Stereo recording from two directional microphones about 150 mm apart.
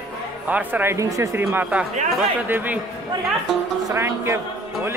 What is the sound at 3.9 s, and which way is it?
Speech, 15° right (ahead or behind).